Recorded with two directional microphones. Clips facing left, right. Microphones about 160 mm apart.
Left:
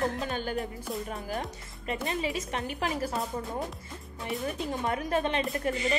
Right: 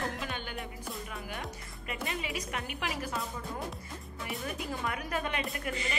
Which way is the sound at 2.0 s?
30° left (ahead or behind).